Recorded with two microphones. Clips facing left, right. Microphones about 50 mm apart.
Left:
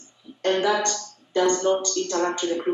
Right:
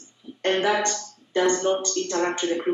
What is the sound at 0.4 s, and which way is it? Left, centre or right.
Speech, right.